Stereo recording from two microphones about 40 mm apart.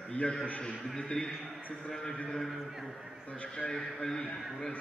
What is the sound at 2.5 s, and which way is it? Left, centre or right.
Speech, centre.